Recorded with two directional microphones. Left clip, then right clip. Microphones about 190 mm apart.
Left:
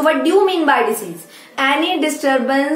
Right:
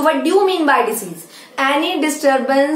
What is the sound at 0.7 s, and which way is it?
Speech, 10° left (ahead or behind).